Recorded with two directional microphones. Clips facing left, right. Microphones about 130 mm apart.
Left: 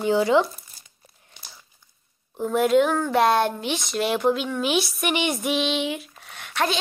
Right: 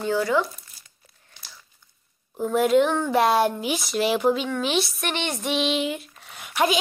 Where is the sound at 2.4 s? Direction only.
Centre (ahead or behind).